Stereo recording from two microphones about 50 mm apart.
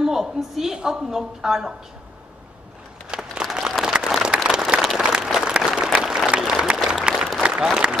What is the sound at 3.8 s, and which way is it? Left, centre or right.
Applause, centre.